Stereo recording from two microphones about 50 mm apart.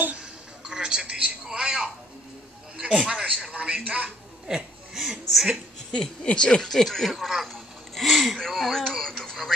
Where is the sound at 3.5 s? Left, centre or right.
Right.